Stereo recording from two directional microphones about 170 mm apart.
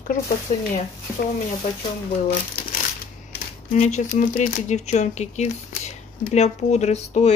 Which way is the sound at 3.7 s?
45° left (ahead or behind).